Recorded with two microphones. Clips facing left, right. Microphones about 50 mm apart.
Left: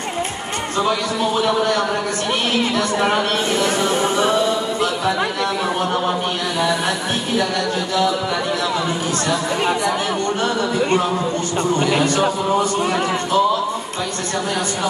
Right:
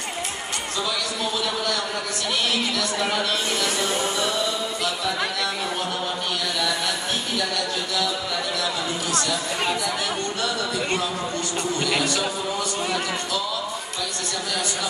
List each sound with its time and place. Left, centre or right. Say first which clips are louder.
0.7 s speech: left 9 dB; left
7.3 s speech: left 9 dB; left
12.0 s speech: left 7 dB; left